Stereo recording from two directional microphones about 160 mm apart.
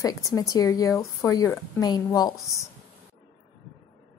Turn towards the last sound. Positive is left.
turn(degrees=25)  # may be behind; listen again after turning